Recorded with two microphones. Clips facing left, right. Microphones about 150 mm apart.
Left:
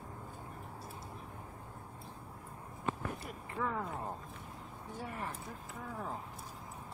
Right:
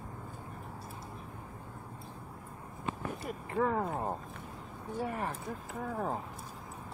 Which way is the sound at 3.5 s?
45° right (ahead or behind).